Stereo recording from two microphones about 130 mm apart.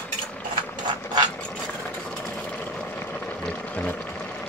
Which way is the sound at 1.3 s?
5° left (ahead or behind).